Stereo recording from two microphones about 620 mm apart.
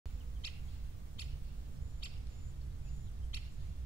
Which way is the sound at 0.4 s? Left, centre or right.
Left.